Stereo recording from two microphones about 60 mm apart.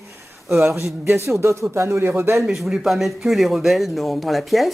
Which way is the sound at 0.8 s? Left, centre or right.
Right.